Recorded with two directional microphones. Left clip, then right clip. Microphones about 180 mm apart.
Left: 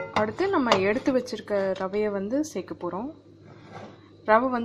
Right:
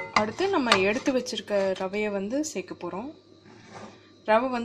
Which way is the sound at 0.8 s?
25° right (ahead or behind).